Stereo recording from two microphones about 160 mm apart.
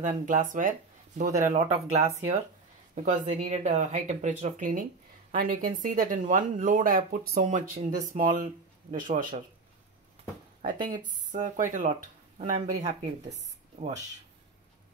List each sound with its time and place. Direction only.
0.0 s speech: 50° right (ahead or behind)
7.7 s speech: 45° right (ahead or behind)
10.6 s speech: 55° right (ahead or behind)